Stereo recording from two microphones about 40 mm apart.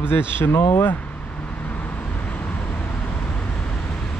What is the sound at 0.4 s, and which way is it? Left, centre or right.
Speech, left.